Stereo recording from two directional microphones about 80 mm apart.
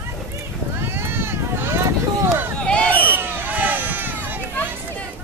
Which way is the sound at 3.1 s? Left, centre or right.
Right.